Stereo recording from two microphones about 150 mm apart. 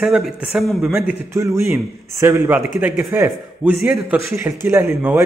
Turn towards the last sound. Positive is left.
turn(degrees=-15)  # may be behind; listen again after turning